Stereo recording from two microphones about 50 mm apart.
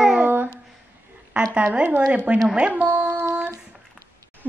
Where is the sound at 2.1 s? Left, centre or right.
Right.